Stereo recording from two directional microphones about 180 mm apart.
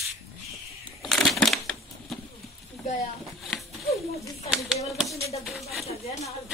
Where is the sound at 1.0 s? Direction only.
5° left (ahead or behind).